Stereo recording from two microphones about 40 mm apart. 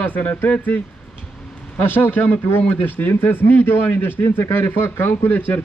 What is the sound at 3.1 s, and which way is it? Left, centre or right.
A man's voice, left.